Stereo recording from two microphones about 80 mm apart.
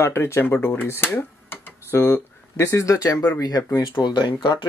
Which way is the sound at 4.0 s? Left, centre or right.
Left.